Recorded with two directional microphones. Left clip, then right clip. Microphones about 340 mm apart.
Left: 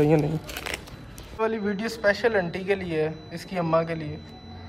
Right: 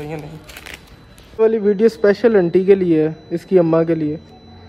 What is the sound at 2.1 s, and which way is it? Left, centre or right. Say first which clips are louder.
Speech: right 10 dB; left.